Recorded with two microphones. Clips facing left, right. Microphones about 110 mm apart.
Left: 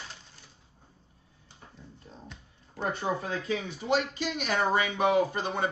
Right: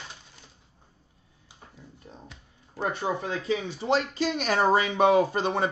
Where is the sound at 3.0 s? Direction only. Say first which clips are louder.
Right 2 dB; 25° right (ahead or behind).